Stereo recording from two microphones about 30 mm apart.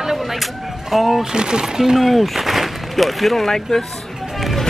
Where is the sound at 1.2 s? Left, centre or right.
Right.